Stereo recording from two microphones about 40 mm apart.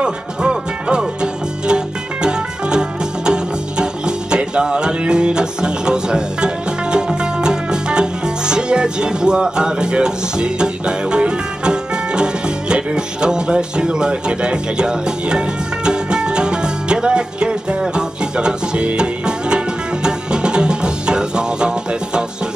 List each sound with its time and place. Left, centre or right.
0.0 s music: right